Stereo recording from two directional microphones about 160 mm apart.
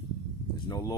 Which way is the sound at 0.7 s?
25° left (ahead or behind).